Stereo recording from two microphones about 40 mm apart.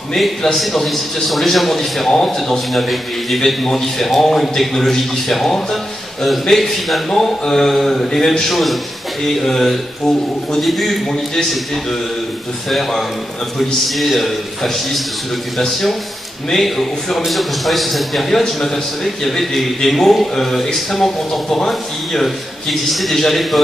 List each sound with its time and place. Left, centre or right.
0.6 s a man's voice: centre
12.6 s a man's voice: centre